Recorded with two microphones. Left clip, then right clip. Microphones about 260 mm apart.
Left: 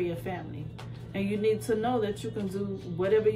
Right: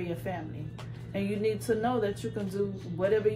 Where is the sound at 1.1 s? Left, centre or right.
Centre.